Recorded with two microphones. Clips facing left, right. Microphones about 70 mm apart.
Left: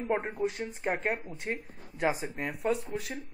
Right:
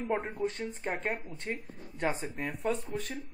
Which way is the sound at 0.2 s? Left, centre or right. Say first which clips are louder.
Left 2 dB; centre.